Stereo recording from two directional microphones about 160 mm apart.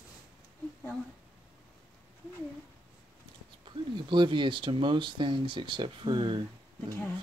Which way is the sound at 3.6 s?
30° right (ahead or behind).